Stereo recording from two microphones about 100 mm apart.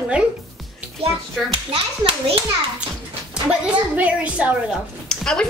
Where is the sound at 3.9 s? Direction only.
15° right (ahead or behind).